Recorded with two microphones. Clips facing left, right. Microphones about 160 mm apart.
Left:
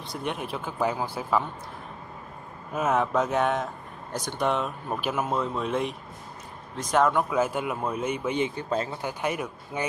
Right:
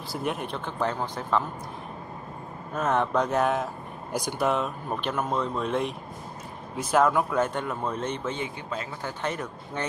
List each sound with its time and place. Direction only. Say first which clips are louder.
0.1 s speech: right 1 dB; centre (ahead or behind)
2.7 s speech: left 1 dB; 5° left (ahead or behind)
8.5 s speech: left 6 dB; 35° left (ahead or behind)
9.0 s speech: left 2 dB; 10° left (ahead or behind)